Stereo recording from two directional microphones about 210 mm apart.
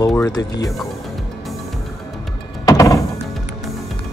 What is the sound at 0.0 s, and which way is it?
Speech, 15° left (ahead or behind).